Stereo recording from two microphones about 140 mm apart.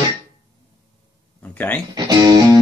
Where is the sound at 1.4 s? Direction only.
10° left (ahead or behind).